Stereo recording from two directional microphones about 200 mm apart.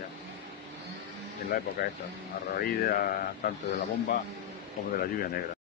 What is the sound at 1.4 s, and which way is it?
Speech, 55° left (ahead or behind).